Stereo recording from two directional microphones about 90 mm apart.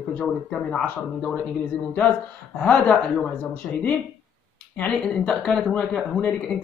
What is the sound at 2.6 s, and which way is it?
Speech, 10° left (ahead or behind).